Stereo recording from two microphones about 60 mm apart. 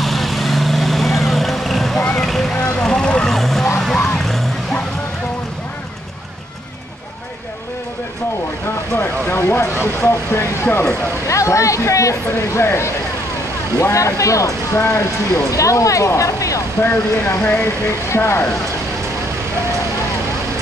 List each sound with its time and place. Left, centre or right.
0.0 s vehicle: centre
2.1 s boat: centre
2.8 s vehicle: centre
8.9 s speech: left
10.4 s speech: left
11.2 s speech: left
13.7 s speech: left
16.8 s speech: left